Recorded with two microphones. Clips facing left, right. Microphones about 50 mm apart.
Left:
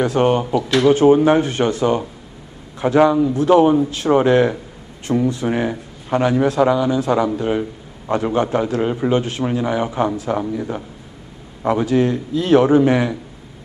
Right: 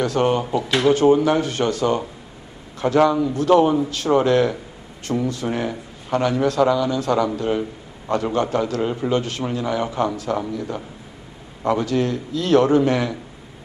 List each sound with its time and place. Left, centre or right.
0.0 s a man's voice: centre